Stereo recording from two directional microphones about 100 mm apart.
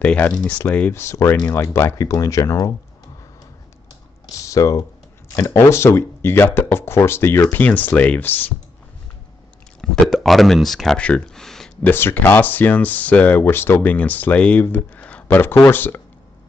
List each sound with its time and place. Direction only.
0.0 s speech: 10° left (ahead or behind)
0.9 s speech: 30° left (ahead or behind)
4.4 s speech: 30° left (ahead or behind)
9.8 s speech: centre (ahead or behind)
11.8 s speech: 20° left (ahead or behind)